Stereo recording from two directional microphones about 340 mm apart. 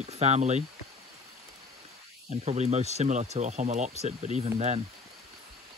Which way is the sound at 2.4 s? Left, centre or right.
Centre.